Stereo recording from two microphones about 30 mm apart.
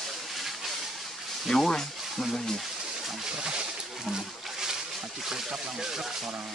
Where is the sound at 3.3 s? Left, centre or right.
Right.